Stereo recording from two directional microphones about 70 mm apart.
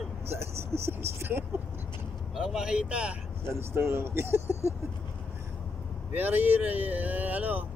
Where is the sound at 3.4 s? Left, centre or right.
Right.